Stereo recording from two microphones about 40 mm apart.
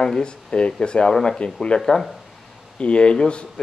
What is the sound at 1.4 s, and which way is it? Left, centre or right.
Speech, left.